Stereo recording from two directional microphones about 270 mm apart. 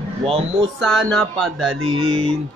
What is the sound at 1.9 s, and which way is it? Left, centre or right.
Mantra, centre.